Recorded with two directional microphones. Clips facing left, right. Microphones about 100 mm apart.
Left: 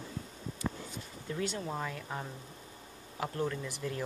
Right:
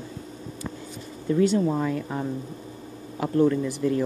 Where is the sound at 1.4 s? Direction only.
20° right (ahead or behind).